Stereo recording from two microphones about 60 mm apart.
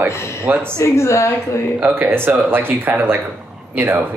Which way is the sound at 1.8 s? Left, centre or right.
Right.